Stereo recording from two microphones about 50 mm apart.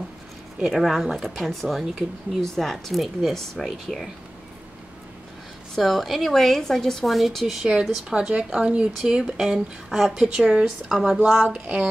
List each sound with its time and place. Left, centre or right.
0.7 s speech: centre
5.8 s speech: centre
7.7 s speech: centre
9.8 s speech: centre
10.1 s speech: centre
11.6 s speech: centre